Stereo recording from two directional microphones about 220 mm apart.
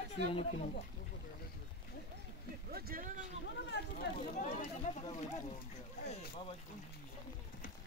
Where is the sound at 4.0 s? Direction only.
35° left (ahead or behind).